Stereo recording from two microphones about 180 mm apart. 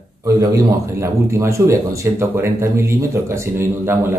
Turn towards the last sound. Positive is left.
turn(degrees=-15)  # may be behind; listen again after turning